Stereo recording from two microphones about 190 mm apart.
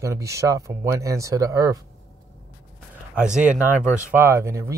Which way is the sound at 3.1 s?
5° right (ahead or behind).